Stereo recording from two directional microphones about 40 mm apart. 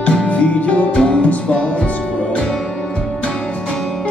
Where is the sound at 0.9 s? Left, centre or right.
Left.